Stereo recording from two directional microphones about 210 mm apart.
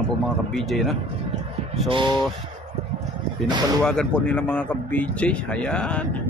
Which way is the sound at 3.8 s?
5° left (ahead or behind).